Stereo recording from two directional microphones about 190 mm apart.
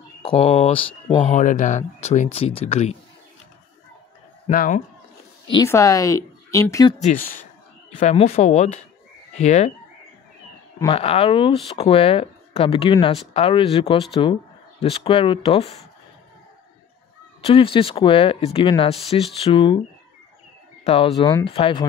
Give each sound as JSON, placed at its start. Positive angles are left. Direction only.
{"t": 0.2, "sound": "speech", "side_deg": 30}
{"t": 1.2, "sound": "speech", "side_deg": 40}
{"t": 4.5, "sound": "speech", "side_deg": 45}
{"t": 5.5, "sound": "speech", "side_deg": 15}
{"t": 7.0, "sound": "speech", "side_deg": 40}
{"t": 10.9, "sound": "speech", "side_deg": 30}
{"t": 17.4, "sound": "speech", "side_deg": 30}
{"t": 20.8, "sound": "speech", "side_deg": 30}